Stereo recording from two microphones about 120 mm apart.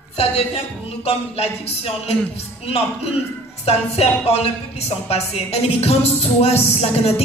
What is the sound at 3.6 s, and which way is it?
Music, 60° left (ahead or behind).